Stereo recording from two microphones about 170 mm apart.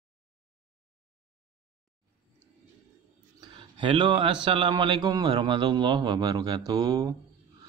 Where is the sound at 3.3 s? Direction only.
30° right (ahead or behind).